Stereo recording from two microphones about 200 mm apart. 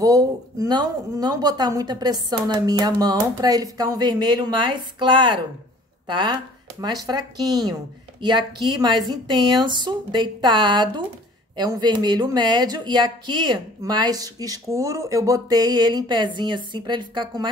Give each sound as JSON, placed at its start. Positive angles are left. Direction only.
{"t": 0.0, "sound": "speech", "side_deg": -15}